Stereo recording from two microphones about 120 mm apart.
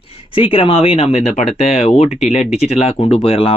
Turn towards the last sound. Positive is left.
turn(degrees=50)  # may be behind; listen again after turning